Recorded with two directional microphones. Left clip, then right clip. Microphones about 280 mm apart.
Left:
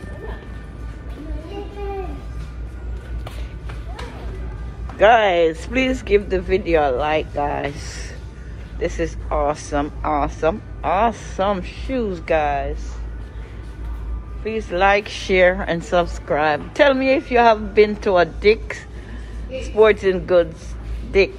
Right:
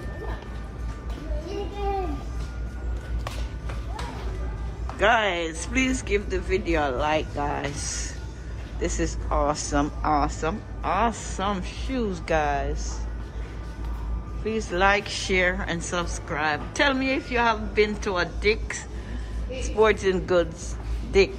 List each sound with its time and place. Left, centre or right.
4.9 s speech: centre
14.4 s speech: centre